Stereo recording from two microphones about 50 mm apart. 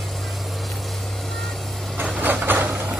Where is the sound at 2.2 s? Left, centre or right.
Right.